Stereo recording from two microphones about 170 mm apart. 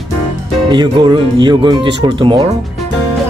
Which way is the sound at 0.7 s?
30° right (ahead or behind).